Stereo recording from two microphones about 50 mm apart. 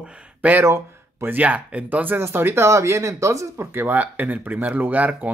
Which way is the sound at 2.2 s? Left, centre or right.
Right.